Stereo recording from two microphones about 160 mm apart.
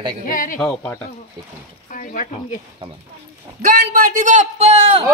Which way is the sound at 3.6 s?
60° right (ahead or behind).